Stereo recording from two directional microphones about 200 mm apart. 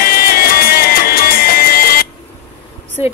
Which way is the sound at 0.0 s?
50° left (ahead or behind).